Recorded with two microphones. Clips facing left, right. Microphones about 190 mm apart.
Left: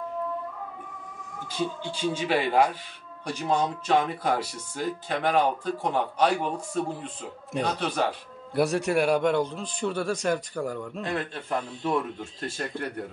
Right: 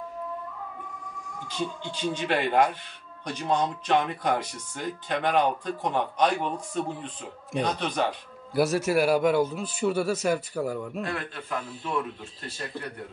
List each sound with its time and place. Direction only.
2.1 s a man's voice: 5° left (ahead or behind)
11.1 s a man's voice: 25° left (ahead or behind)
11.5 s speech: 40° left (ahead or behind)